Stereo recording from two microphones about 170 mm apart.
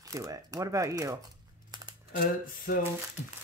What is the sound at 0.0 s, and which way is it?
Speech, 20° right (ahead or behind).